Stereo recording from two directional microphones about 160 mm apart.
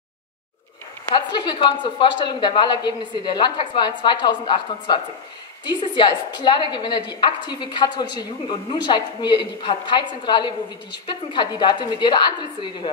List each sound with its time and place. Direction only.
1.1 s a woman's voice: 25° left (ahead or behind)